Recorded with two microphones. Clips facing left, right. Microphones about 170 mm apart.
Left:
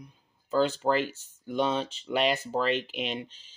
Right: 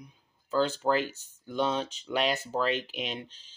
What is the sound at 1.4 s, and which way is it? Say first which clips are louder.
Speech: left 1 dB; centre (ahead or behind).